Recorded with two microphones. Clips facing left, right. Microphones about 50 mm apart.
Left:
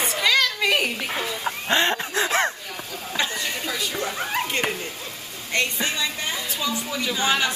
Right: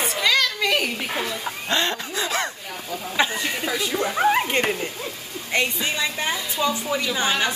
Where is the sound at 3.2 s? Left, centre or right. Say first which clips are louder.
Right 4 dB; centre.